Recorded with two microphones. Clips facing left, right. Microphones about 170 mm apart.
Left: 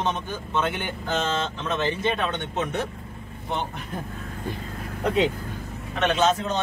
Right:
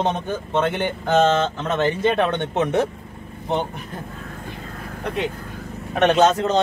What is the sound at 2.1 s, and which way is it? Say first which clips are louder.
Speech: right 7 dB; 70° right (ahead or behind).